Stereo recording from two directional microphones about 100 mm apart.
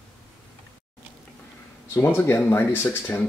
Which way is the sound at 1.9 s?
20° left (ahead or behind).